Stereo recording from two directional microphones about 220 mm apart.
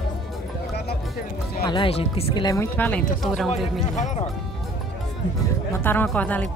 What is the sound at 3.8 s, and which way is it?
Speech, 35° left (ahead or behind).